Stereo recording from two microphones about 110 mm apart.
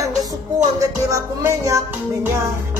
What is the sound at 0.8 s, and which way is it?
Music, 30° right (ahead or behind).